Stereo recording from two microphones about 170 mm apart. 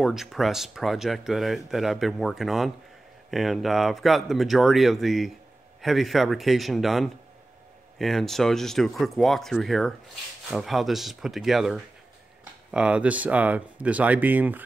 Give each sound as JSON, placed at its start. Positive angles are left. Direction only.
{"t": 0.0, "sound": "speech", "side_deg": 0}